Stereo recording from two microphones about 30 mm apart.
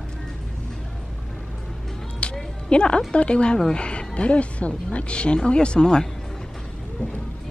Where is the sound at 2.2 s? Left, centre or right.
Left.